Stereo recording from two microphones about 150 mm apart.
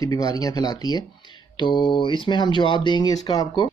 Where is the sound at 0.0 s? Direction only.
25° left (ahead or behind).